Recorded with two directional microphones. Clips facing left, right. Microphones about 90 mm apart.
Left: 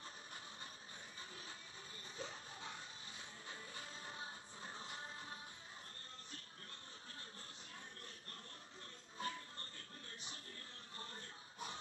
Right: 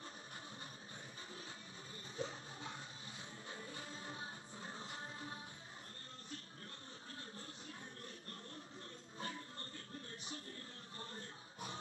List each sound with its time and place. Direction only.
2.1 s music: 30° right (ahead or behind)
9.2 s music: 30° right (ahead or behind)